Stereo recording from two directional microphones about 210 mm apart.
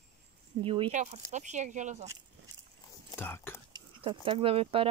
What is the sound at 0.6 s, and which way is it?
Speech, 25° right (ahead or behind).